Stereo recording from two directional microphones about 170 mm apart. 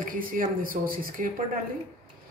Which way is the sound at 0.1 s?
55° right (ahead or behind).